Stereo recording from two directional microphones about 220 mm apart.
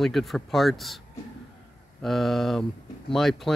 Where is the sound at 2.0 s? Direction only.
Centre (ahead or behind).